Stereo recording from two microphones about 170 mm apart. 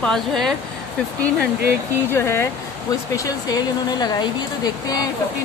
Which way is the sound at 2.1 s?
15° left (ahead or behind).